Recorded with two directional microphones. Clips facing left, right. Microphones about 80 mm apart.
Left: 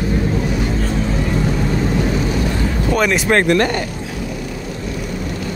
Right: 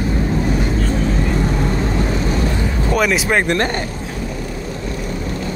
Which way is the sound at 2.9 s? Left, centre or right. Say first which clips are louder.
Left 1 dB; centre.